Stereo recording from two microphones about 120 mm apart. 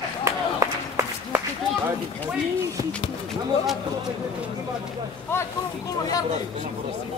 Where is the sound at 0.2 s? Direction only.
25° right (ahead or behind).